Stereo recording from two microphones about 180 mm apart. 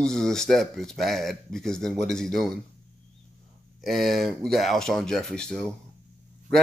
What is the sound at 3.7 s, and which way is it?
Speech, centre (ahead or behind).